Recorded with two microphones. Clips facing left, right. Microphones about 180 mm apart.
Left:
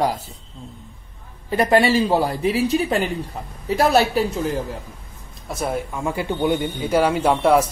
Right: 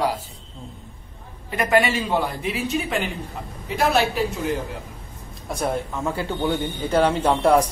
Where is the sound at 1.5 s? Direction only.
35° left (ahead or behind).